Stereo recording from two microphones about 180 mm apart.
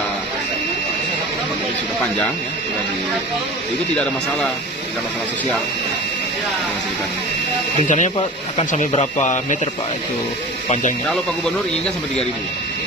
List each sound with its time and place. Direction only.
7.8 s speech: 45° left (ahead or behind)
10.7 s speech: 45° left (ahead or behind)